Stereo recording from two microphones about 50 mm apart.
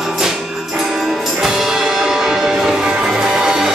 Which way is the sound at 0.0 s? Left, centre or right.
Centre.